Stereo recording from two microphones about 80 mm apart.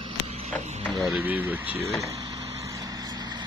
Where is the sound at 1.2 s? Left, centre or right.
Right.